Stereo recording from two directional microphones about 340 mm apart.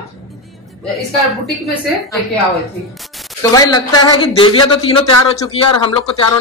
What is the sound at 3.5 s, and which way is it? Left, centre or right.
A man's voice, centre.